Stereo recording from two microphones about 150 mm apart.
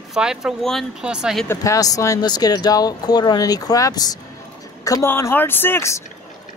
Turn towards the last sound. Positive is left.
turn(degrees=20)  # may be behind; listen again after turning